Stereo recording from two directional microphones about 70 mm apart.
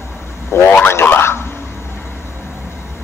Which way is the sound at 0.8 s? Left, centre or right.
Left.